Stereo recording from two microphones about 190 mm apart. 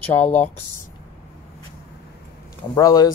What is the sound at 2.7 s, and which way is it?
Speech, 20° left (ahead or behind).